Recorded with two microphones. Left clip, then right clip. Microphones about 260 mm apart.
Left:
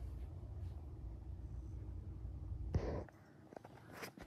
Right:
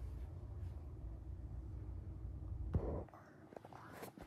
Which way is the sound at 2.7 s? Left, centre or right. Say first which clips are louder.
Left 1 dB; right.